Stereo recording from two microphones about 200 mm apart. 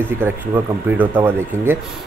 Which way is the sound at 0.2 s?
10° right (ahead or behind).